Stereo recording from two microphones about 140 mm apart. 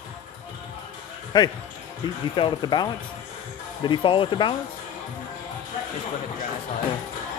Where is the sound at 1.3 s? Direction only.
30° left (ahead or behind).